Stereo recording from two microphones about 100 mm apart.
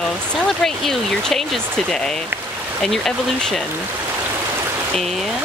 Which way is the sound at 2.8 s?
5° left (ahead or behind).